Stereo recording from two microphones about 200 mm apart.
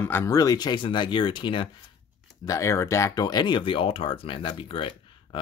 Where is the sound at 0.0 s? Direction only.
10° left (ahead or behind).